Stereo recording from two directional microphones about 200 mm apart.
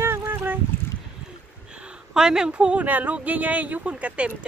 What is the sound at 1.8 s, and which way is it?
A woman's voice, 5° right (ahead or behind).